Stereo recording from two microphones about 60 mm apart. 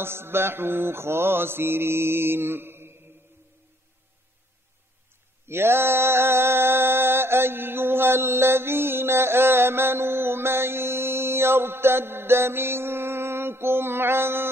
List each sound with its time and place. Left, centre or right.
0.0 s mantra: right
5.5 s mantra: right